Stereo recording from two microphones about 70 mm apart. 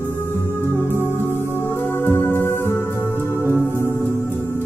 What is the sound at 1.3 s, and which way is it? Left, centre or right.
Music, left.